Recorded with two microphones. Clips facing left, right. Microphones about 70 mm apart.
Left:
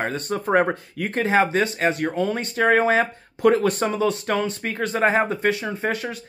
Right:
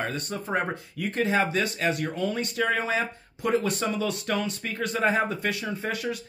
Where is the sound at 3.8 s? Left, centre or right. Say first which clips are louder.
Left 6 dB; left.